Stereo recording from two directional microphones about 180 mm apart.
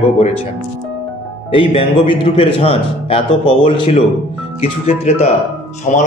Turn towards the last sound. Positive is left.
turn(degrees=40)  # may be behind; listen again after turning